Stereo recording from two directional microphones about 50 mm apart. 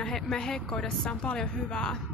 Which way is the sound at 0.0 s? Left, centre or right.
Centre.